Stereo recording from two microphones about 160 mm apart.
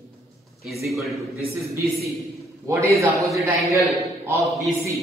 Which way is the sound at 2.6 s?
20° right (ahead or behind).